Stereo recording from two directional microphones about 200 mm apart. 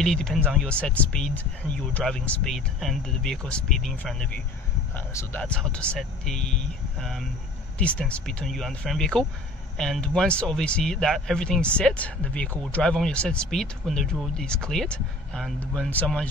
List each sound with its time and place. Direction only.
0.0 s speech: 5° left (ahead or behind)